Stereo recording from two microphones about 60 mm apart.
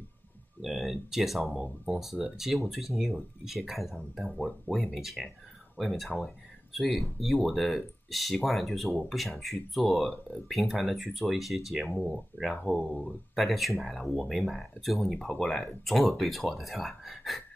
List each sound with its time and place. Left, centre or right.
0.6 s speech: centre
11.9 s speech: left
13.3 s speech: centre
15.1 s speech: centre